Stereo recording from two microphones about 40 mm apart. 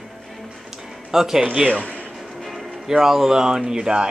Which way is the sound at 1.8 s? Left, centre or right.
Left.